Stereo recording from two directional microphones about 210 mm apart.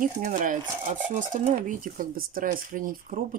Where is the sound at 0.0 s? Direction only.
40° right (ahead or behind).